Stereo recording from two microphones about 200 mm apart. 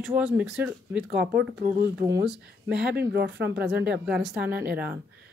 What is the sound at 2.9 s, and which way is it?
Speech, 55° right (ahead or behind).